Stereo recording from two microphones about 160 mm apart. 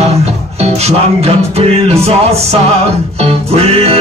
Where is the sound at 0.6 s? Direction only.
40° right (ahead or behind).